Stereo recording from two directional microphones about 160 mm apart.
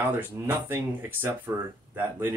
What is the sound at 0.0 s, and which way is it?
Speech, 15° right (ahead or behind).